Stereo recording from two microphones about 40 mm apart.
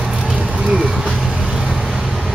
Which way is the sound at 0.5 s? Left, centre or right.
Right.